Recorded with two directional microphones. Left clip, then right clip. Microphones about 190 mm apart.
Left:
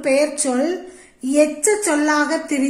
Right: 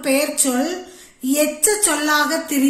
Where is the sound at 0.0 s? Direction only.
20° left (ahead or behind).